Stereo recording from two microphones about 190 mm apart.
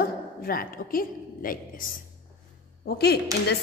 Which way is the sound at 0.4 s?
50° left (ahead or behind).